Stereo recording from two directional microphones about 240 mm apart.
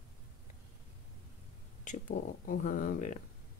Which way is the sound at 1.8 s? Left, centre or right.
Left.